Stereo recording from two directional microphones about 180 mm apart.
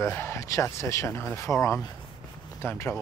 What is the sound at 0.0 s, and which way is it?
Speech, 15° left (ahead or behind).